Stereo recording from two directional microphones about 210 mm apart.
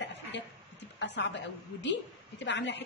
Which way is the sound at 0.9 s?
55° left (ahead or behind).